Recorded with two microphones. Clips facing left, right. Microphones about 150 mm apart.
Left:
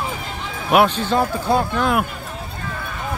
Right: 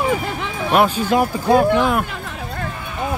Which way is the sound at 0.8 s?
10° right (ahead or behind).